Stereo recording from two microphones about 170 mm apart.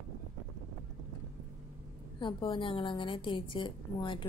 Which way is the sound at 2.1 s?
30° left (ahead or behind).